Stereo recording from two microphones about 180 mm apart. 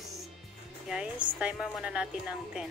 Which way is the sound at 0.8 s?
5° right (ahead or behind).